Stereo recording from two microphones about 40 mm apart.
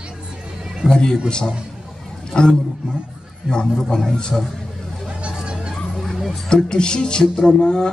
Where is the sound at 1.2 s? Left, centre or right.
Centre.